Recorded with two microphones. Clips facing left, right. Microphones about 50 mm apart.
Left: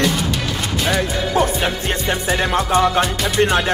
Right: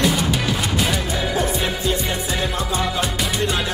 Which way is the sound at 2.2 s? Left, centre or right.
Left.